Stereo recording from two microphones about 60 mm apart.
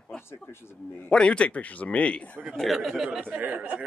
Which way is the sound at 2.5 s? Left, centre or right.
Centre.